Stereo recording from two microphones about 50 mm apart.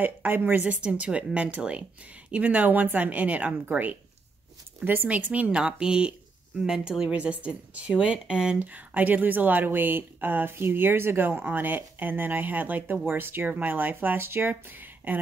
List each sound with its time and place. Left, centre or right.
0.0 s speech: right
0.7 s speech: right
5.1 s speech: right
5.5 s speech: centre
7.1 s speech: right
8.5 s speech: right
13.5 s speech: right